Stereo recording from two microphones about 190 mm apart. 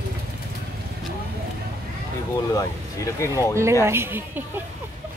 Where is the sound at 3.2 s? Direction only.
15° left (ahead or behind).